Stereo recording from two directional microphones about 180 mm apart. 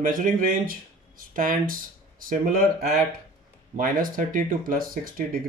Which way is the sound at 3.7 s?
50° right (ahead or behind).